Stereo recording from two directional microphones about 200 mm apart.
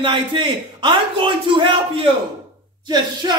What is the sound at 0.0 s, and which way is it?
A man's voice, 25° right (ahead or behind).